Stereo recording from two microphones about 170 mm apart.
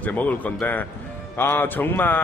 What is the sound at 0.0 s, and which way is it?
A man's voice, 10° left (ahead or behind).